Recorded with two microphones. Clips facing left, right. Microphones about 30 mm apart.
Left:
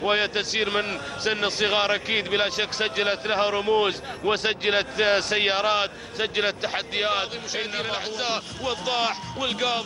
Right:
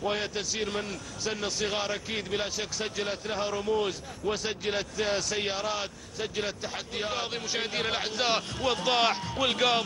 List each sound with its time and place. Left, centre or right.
0.0 s a man's voice: left
7.5 s a man's voice: centre